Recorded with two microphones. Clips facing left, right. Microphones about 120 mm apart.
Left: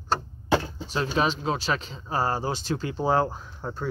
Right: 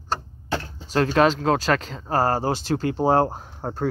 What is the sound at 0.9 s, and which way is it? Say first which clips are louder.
Speech: right 7 dB; 85° right.